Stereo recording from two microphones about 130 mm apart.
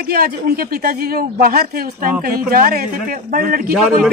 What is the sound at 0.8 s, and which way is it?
Speech, 90° right.